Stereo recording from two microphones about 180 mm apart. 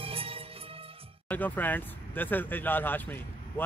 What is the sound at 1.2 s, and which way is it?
Speech, 10° left (ahead or behind).